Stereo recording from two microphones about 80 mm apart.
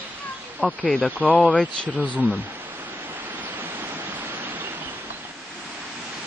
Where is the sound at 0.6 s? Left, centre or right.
Centre.